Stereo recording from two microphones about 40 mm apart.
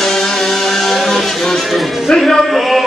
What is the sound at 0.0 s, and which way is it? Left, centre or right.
Music, centre.